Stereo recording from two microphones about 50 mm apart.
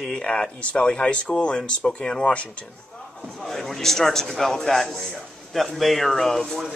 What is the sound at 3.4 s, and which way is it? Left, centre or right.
A man's voice, centre.